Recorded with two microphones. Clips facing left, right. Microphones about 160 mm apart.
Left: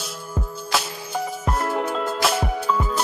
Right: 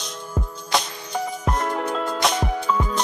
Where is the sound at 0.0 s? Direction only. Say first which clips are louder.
Even; 5° left (ahead or behind).